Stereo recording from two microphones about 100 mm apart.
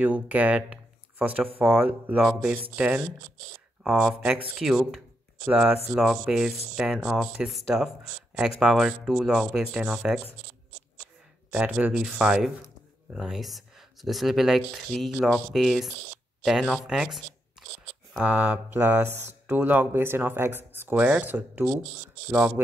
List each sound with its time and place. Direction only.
0.0 s speech: 15° right (ahead or behind)
11.5 s speech: 15° right (ahead or behind)
11.9 s speech: 5° right (ahead or behind)
22.3 s speech: 5° right (ahead or behind)